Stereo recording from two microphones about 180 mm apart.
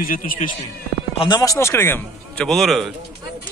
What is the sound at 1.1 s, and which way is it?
Speech, 30° left (ahead or behind).